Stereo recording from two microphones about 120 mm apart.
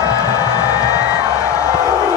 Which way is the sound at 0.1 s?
25° left (ahead or behind).